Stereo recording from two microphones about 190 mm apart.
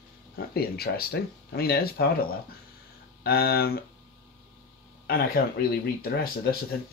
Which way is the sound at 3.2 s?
55° left (ahead or behind).